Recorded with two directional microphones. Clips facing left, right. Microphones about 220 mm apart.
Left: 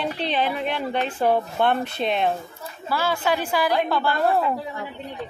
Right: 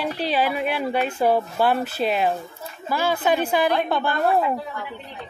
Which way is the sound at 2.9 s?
15° right (ahead or behind).